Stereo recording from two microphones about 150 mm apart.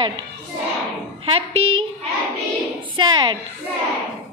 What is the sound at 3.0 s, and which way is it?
Speech, 30° right (ahead or behind).